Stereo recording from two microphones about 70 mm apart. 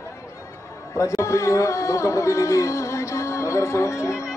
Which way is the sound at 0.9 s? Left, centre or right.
Left.